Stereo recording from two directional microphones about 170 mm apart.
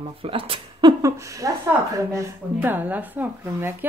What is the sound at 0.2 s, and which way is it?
A woman's voice, 35° right (ahead or behind).